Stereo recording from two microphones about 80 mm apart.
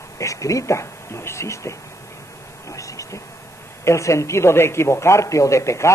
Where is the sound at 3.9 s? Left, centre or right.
Left.